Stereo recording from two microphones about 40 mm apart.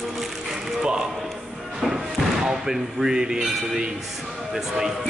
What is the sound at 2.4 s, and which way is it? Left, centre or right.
Speech, centre.